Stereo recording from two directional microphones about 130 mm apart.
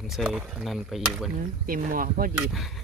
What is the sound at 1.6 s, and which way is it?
Speech, 90° right.